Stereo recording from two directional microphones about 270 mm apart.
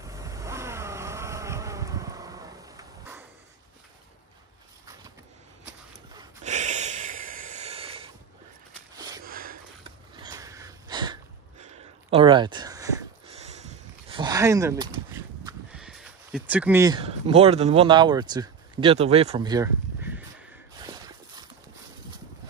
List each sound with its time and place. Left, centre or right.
0.0 s vehicle: centre
6.4 s snort: right
8.9 s sniff: centre
9.2 s a sound: right
10.1 s sniff: centre
12.1 s speech: centre
13.3 s a sound: right; by 20.2 s centre